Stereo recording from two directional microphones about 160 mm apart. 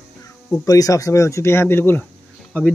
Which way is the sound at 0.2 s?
20° left (ahead or behind).